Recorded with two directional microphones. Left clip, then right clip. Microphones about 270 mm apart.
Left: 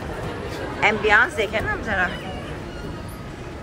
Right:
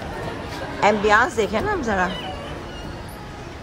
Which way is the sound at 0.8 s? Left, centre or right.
Centre.